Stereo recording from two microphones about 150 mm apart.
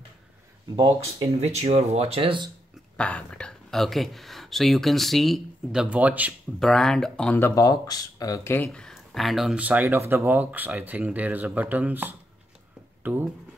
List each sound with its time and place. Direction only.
0.7 s speech: 30° right (ahead or behind)
1.4 s speech: 45° right (ahead or behind)
3.0 s speech: 10° left (ahead or behind); by 6.3 s 10° right (ahead or behind)
6.6 s speech: 5° left (ahead or behind); by 8.5 s 25° left (ahead or behind)
8.5 s speech: 5° left (ahead or behind); by 13.3 s 10° right (ahead or behind)